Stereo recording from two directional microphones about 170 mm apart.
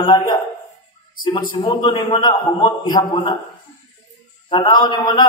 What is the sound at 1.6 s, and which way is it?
Speech, 30° left (ahead or behind).